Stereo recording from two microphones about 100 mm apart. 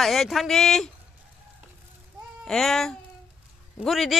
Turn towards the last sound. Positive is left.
turn(degrees=0)  # may be behind; listen again after turning